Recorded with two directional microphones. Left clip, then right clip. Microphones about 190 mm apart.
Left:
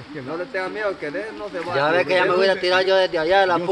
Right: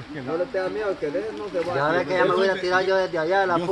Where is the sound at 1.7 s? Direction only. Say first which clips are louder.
Left 5 dB; 35° left (ahead or behind).